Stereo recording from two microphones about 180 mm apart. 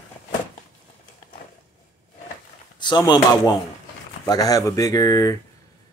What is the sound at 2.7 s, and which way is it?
Speech, 25° left (ahead or behind).